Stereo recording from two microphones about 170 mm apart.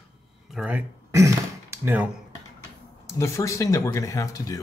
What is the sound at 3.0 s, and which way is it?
Speech, 15° left (ahead or behind).